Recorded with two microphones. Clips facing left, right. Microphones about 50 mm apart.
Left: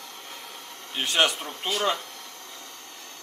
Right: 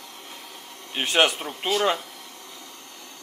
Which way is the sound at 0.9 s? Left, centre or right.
Right.